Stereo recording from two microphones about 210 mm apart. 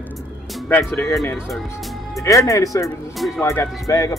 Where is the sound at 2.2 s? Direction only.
15° left (ahead or behind).